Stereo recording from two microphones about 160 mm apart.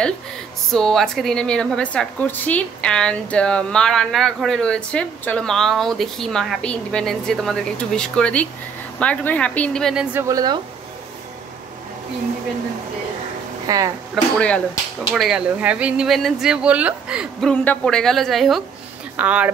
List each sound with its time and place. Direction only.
0.7 s a woman's voice: 5° left (ahead or behind)
10.1 s speech: 20° right (ahead or behind)
13.7 s speech: 20° right (ahead or behind)
14.1 s a woman's voice: 5° left (ahead or behind)
15.1 s a woman's voice: 5° right (ahead or behind)
17.5 s a woman's voice: 5° left (ahead or behind)